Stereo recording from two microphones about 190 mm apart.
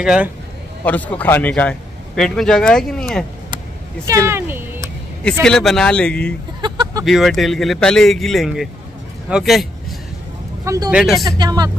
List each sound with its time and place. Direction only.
0.0 s a man's voice: 5° right (ahead or behind)
0.8 s a man's voice: 10° left (ahead or behind)
4.3 s a sound: 10° right (ahead or behind)
5.4 s a man's voice: centre (ahead or behind)
6.6 s a sound: 20° right (ahead or behind)
7.1 s a man's voice: centre (ahead or behind)
10.6 s a man's voice: 15° right (ahead or behind)
10.9 s a man's voice: centre (ahead or behind)
11.2 s speech: 20° right (ahead or behind)